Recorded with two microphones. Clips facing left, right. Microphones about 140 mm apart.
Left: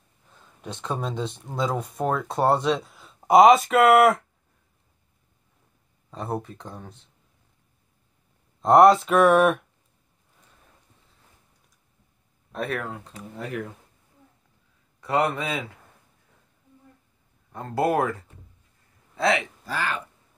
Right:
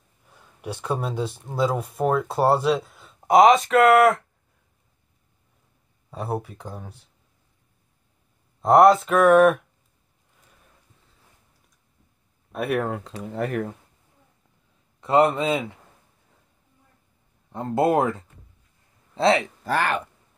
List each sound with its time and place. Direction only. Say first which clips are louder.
0.3 s speech: right 4 dB; 10° right (ahead or behind)
6.0 s speech: right 2 dB; 5° right (ahead or behind)
8.6 s speech: even; centre (ahead or behind)
12.5 s speech: right 5 dB; 10° right (ahead or behind)
12.9 s speech: right 8 dB; 80° right
15.0 s speech: right 5 dB; 25° right (ahead or behind)
17.5 s speech: right 3 dB; 20° right (ahead or behind)
19.6 s speech: right 6 dB; 60° right (ahead or behind)